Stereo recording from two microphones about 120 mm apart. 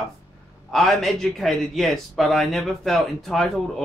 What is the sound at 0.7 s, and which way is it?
Speech, centre (ahead or behind).